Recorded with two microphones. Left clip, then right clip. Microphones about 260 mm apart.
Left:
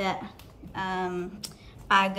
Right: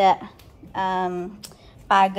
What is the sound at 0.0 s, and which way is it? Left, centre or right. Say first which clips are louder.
A woman's voice: right 12 dB; centre.